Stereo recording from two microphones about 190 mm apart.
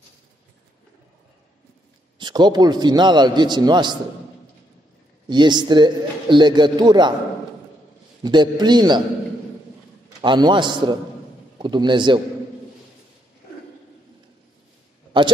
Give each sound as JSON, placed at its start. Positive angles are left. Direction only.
{"t": 2.1, "sound": "a man's voice", "side_deg": -25}
{"t": 5.3, "sound": "a man's voice", "side_deg": -25}
{"t": 8.2, "sound": "a man's voice", "side_deg": -20}
{"t": 10.2, "sound": "a man's voice", "side_deg": -25}